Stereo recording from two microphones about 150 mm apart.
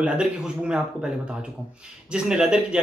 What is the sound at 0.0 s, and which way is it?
Speech, 5° right (ahead or behind).